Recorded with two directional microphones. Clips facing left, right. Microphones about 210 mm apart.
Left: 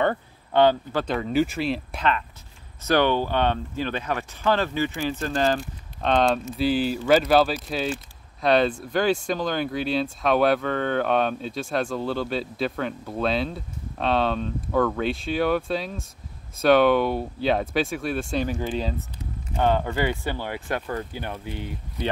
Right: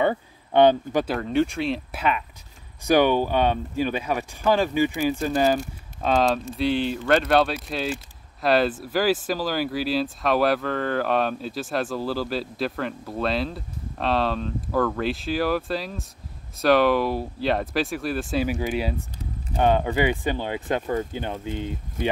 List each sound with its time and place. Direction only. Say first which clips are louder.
0.0 s speech: right 1 dB; 15° right (ahead or behind)
1.0 s speech: left 3 dB; centre (ahead or behind); by 21.7 s 20° right (ahead or behind)